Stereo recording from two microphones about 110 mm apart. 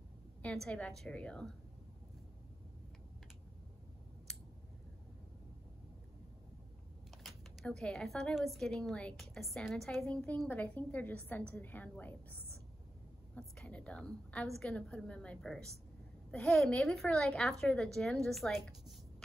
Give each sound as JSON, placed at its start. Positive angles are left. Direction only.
{"t": 0.4, "sound": "a woman's voice", "side_deg": 10}
{"t": 7.2, "sound": "a woman's voice", "side_deg": 5}